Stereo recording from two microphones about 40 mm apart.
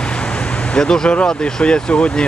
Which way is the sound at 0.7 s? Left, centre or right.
Centre.